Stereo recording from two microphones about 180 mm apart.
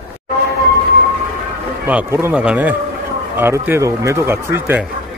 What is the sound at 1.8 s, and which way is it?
Speech, 10° right (ahead or behind).